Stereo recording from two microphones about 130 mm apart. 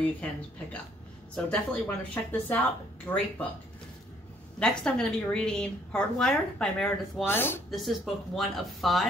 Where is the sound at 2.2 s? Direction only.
15° left (ahead or behind).